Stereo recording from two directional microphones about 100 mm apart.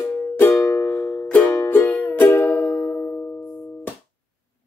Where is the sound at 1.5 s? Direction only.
30° left (ahead or behind).